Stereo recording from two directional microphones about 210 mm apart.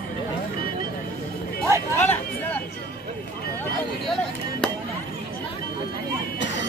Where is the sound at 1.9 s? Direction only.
10° left (ahead or behind).